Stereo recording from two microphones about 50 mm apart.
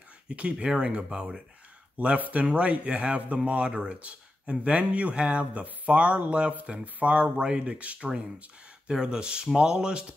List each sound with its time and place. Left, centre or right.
0.3 s speech: centre
2.0 s speech: right